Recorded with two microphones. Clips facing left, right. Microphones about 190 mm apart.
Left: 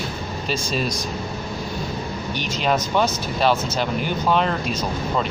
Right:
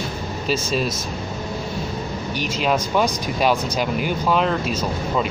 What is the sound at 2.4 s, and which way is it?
Speech, 5° right (ahead or behind).